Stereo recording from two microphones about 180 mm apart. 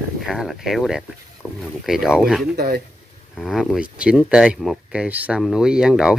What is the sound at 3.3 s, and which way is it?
Speech, centre (ahead or behind).